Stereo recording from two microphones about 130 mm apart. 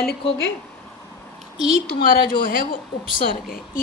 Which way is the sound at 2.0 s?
90° left.